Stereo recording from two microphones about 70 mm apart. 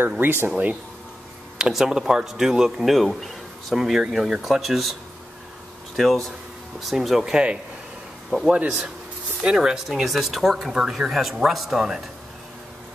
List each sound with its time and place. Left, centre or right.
0.2 s speech: right
0.5 s speech: centre
1.6 s speech: centre
5.9 s speech: centre